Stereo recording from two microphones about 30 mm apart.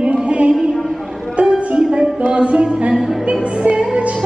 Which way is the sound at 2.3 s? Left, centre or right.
Right.